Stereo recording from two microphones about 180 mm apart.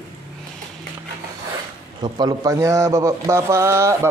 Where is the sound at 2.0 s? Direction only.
25° right (ahead or behind).